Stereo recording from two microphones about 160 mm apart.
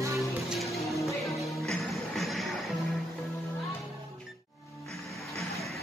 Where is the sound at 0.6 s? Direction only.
Centre (ahead or behind).